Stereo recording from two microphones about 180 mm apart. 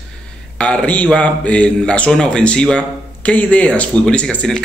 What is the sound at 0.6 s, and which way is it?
A man's voice, 5° left (ahead or behind).